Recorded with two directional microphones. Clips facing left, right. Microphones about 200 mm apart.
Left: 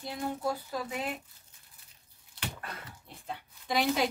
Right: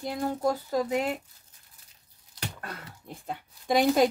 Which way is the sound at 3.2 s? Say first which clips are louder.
Right 7 dB; 45° right (ahead or behind).